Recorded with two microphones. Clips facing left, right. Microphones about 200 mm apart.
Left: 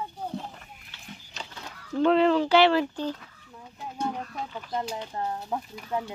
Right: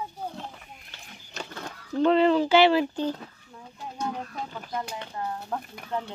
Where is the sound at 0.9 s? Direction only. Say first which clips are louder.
Right 2 dB; 50° right (ahead or behind).